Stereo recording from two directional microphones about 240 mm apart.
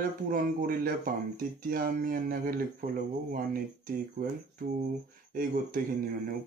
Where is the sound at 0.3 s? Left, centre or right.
Right.